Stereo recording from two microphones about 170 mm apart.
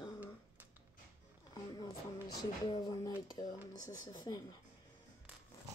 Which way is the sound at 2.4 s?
25° left (ahead or behind).